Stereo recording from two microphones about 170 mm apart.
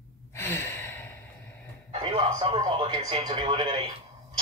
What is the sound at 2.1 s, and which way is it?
Speech, 35° right (ahead or behind).